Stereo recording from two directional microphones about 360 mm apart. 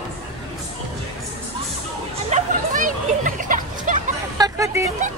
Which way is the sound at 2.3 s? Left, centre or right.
Right.